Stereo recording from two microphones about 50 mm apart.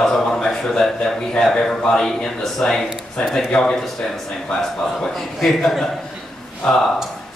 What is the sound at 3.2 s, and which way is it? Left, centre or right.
Speech, left.